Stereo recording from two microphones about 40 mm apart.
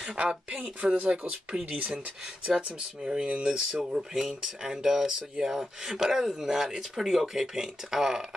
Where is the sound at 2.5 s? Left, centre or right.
Centre.